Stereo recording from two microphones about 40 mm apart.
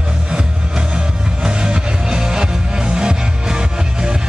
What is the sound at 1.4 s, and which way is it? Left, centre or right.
Music, centre.